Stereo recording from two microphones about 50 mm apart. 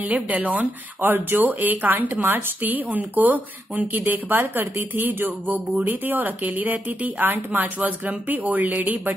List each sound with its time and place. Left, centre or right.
0.0 s speech: right